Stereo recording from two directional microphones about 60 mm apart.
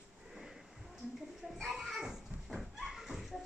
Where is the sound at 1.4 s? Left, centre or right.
Centre.